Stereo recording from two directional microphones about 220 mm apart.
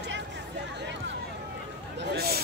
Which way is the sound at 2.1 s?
45° right (ahead or behind).